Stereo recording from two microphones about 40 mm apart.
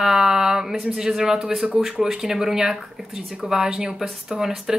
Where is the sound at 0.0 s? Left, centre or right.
Centre.